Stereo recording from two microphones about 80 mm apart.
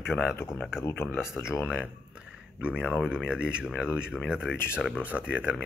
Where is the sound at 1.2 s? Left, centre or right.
Centre.